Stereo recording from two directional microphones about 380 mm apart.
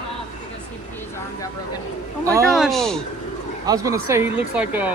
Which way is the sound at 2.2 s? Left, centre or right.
Centre.